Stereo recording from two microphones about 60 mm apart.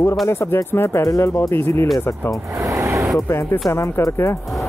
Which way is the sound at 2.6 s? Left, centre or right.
Right.